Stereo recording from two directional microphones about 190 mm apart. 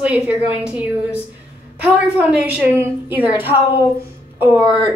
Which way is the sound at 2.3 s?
10° right (ahead or behind).